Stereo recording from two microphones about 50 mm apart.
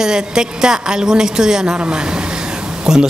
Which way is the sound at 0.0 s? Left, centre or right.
Centre.